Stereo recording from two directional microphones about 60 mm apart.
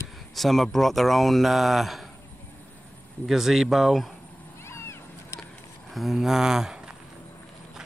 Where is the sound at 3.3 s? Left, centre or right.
Centre.